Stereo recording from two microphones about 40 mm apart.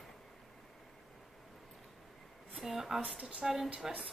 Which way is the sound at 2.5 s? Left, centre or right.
Centre.